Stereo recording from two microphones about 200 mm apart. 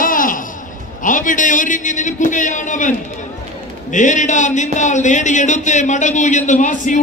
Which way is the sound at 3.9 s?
40° left (ahead or behind).